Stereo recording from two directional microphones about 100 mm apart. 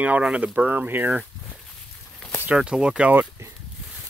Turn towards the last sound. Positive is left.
turn(degrees=-15)  # may be behind; listen again after turning